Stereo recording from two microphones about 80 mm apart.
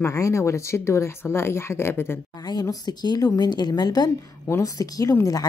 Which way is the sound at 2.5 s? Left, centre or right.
Left.